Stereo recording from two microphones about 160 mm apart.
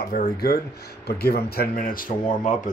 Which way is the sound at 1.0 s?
85° left.